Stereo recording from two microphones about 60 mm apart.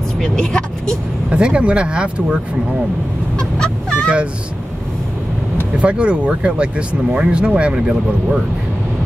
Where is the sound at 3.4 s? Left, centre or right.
Centre.